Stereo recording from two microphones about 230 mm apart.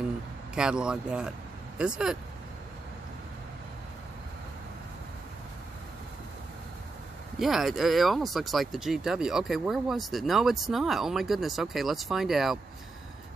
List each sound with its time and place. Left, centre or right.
0.6 s speech: centre
7.3 s speech: centre